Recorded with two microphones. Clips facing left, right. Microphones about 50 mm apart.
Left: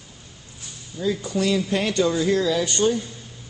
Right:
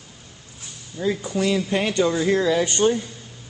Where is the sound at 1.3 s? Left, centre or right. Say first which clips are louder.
Even; centre.